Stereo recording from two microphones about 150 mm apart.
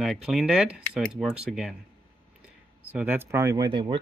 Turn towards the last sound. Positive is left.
turn(degrees=-35)  # may be behind; listen again after turning